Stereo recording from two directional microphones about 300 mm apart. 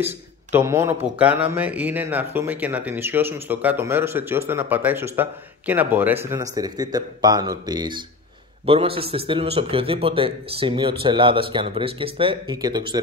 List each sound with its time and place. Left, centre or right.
0.5 s a man's voice: centre